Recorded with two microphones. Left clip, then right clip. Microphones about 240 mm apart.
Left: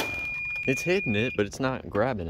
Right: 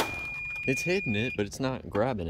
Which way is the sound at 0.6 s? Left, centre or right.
Centre.